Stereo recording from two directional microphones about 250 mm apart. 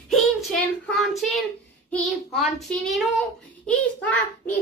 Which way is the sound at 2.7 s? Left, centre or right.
Centre.